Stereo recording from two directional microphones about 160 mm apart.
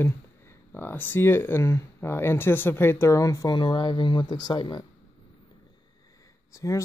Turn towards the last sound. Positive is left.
turn(degrees=20)  # may be behind; listen again after turning